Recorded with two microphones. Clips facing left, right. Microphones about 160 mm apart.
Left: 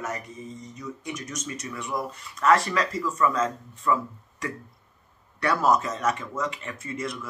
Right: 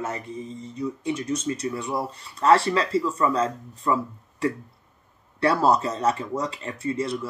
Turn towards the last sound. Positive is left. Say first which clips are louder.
# right 6 dB
turn(degrees=-30)  # may be behind; listen again after turning